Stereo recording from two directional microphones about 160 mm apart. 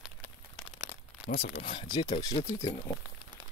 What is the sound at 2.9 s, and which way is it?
Speech, 15° left (ahead or behind).